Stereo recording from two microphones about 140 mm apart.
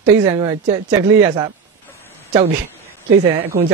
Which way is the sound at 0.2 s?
25° right (ahead or behind).